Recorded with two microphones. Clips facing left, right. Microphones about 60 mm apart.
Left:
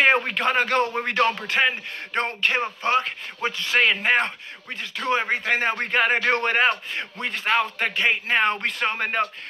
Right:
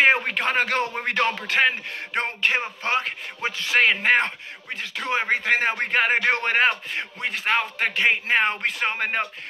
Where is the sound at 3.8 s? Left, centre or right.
Right.